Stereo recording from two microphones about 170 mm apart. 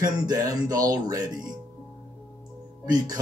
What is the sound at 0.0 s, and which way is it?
Speech, 20° right (ahead or behind).